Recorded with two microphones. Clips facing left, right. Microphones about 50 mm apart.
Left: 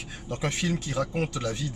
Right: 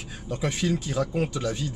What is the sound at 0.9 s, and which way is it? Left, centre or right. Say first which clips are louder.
Speech: right 2 dB; centre.